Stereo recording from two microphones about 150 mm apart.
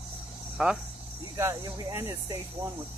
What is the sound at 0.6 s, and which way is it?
Speech, 5° right (ahead or behind).